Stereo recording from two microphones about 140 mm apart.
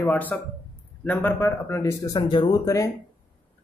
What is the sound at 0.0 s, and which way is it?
A man's voice, 15° left (ahead or behind).